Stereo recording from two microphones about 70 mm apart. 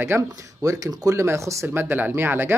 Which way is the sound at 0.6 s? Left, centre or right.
Right.